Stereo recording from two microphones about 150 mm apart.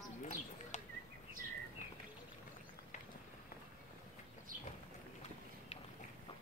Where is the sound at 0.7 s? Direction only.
55° left (ahead or behind).